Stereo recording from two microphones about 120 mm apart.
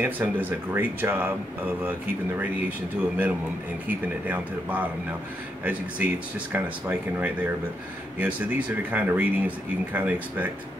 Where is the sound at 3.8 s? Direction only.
15° right (ahead or behind).